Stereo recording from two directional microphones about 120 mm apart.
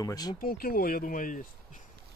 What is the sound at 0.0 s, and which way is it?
Speech, 30° left (ahead or behind).